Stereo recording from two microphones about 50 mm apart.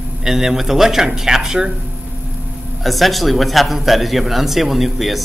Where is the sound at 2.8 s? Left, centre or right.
Centre.